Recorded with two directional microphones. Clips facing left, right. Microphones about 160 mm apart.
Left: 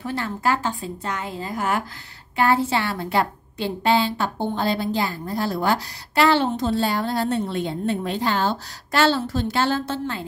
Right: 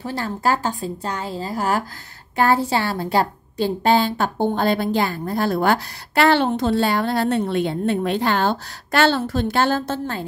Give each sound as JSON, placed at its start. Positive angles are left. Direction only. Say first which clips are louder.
{"t": 0.0, "sound": "a woman's voice", "louder": "right 2 dB", "side_deg": -35}